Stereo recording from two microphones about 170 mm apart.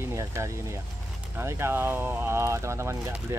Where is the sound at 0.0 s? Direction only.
15° right (ahead or behind).